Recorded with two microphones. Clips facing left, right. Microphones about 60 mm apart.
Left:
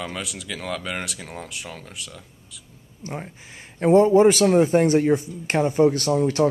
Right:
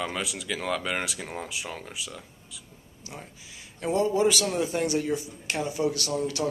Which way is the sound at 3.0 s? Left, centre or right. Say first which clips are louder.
Left 9 dB; left.